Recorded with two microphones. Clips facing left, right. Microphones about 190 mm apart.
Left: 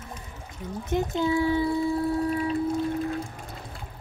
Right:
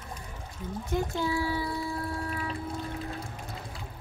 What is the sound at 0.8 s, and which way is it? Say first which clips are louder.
Speech: left 5 dB; 20° left (ahead or behind).